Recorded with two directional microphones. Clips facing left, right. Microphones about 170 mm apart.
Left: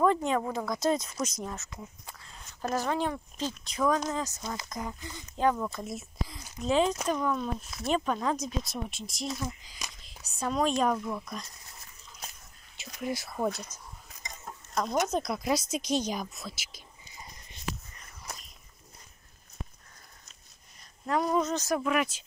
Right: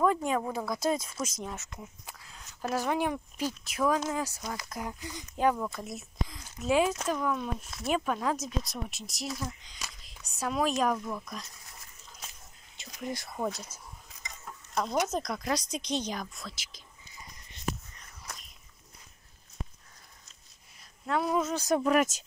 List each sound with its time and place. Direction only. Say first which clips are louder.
0.0 s speech: left 1 dB; 5° right (ahead or behind)
5.6 s speech: left 1 dB; centre (ahead or behind)
10.3 s speech: left 1 dB; 5° right (ahead or behind)
12.7 s speech: left 3 dB; 5° left (ahead or behind)
14.7 s chicken: left 1 dB; 5° right (ahead or behind)
15.0 s speech: left 3 dB; 5° left (ahead or behind)
21.1 s speech: left 1 dB; 5° right (ahead or behind)
21.8 s speech: right 3 dB; 40° right (ahead or behind)